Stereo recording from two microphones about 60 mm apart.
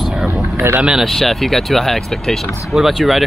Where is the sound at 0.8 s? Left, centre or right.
Centre.